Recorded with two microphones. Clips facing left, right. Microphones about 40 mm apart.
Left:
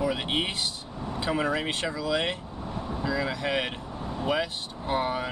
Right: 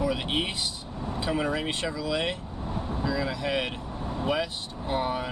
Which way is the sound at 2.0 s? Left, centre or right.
Centre.